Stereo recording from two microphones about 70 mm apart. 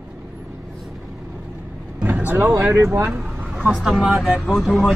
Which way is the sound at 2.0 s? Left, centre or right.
Right.